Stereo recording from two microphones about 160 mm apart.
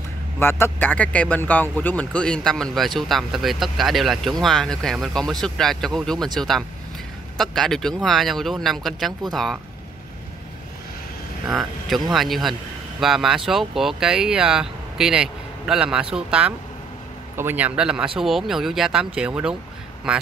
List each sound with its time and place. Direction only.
0.4 s speech: 15° left (ahead or behind)
11.4 s a man's voice: centre (ahead or behind)